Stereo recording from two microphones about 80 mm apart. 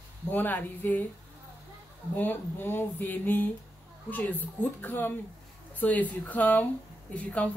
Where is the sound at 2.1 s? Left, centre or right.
Left.